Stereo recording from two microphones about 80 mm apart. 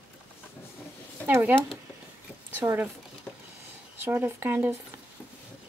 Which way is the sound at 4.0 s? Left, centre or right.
Right.